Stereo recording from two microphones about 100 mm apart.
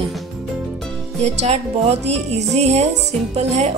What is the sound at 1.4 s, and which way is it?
Speech, 90° right.